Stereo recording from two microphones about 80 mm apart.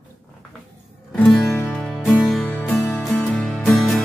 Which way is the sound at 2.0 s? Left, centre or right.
Centre.